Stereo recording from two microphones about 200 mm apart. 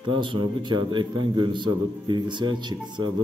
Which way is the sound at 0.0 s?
25° right (ahead or behind).